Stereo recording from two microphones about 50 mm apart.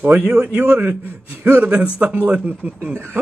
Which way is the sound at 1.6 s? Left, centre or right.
Right.